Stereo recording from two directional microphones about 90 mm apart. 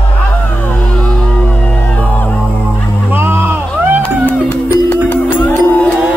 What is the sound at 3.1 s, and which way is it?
Music, 25° right (ahead or behind).